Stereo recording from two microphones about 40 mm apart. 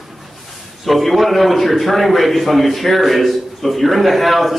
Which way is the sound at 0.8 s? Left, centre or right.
Centre.